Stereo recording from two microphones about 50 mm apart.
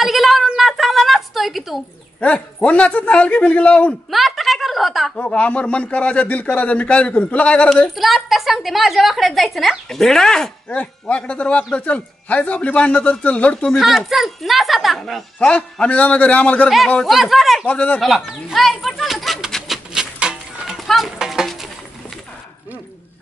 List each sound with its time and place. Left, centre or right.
0.0 s a sound: centre
0.6 s fowl: centre
2.1 s speech: left
4.1 s a sound: centre
5.2 s speech: left
7.9 s a woman's voice: centre
10.7 s speech: left
13.7 s a woman's voice: centre
15.4 s speech: left
17.0 s a woman's voice: centre
17.6 s speech: left
18.0 s a woman's voice: centre
19.7 s a sound: centre
20.7 s speech: centre